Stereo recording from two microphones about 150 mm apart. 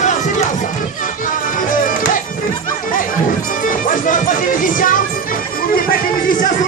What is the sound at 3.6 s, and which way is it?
Music, 60° left (ahead or behind).